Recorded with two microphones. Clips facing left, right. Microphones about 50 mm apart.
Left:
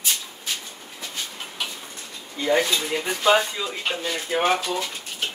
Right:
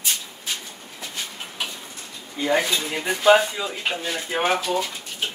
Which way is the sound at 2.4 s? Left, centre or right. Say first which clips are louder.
Left 1 dB; centre.